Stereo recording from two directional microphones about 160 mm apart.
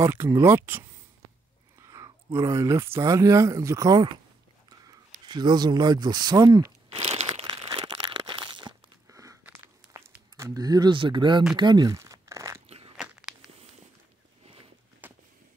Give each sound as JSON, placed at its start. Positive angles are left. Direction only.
{"t": 0.0, "sound": "speech", "side_deg": -15}
{"t": 5.2, "sound": "speech", "side_deg": -25}
{"t": 6.9, "sound": "crumpling", "side_deg": -45}
{"t": 7.4, "sound": "crumpling", "side_deg": -30}
{"t": 12.6, "sound": "crunch", "side_deg": -40}
{"t": 12.9, "sound": "biting", "side_deg": -5}
{"t": 15.0, "sound": "a sound", "side_deg": -10}